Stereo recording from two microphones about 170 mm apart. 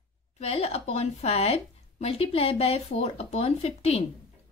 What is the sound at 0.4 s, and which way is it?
A woman's voice, 35° left (ahead or behind).